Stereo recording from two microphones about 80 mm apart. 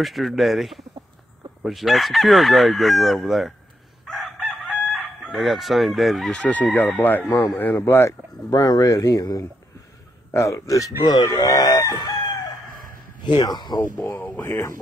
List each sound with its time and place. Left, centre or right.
0.0 s crowing: centre
4.0 s chicken: centre
5.2 s crowing: centre
6.3 s a man's voice: centre; by 8.1 s left
8.5 s a man's voice: left
11.1 s speech: left
14.4 s a man's voice: left